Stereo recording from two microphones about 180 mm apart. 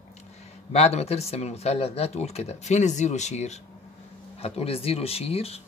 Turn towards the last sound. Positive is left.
turn(degrees=35)  # may be behind; listen again after turning